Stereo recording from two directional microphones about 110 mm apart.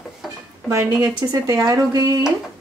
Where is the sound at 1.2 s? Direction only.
35° right (ahead or behind).